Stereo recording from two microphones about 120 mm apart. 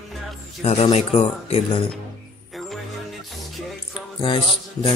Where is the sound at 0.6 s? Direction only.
60° left (ahead or behind).